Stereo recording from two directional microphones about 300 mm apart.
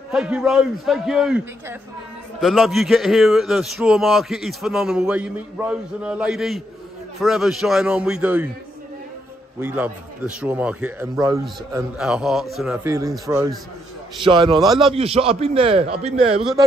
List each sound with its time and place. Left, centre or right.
0.1 s a man's voice: centre
9.6 s a man's voice: centre
14.2 s a man's voice: centre